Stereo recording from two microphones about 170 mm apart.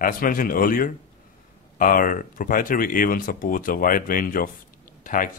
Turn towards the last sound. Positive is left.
turn(degrees=50)  # may be behind; listen again after turning